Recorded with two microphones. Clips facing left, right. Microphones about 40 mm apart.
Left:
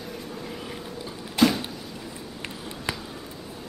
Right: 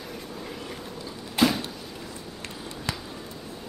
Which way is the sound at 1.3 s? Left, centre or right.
Centre.